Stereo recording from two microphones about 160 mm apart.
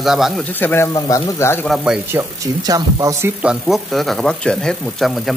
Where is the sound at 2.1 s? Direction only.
20° right (ahead or behind).